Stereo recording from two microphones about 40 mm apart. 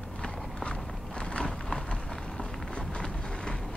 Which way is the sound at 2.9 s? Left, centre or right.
Left.